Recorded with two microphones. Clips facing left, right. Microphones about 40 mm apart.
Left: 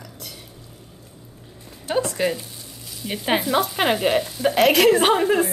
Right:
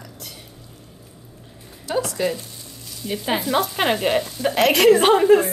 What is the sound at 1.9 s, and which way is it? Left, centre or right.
Speech, left.